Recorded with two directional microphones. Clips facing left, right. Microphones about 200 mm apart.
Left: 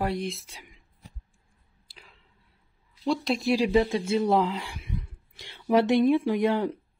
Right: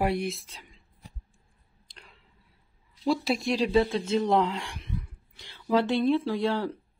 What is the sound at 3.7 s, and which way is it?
Speech, 15° left (ahead or behind).